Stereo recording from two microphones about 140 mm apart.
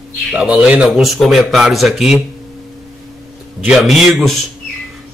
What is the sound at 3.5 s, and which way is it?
Speech, centre (ahead or behind).